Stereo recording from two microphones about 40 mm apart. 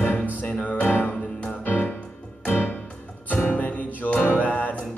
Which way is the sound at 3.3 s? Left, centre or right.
Left.